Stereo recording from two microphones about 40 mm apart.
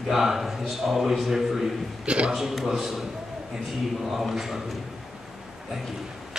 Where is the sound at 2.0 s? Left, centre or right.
Right.